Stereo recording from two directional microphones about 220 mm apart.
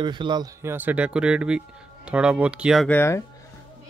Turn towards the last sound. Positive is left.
turn(degrees=10)  # may be behind; listen again after turning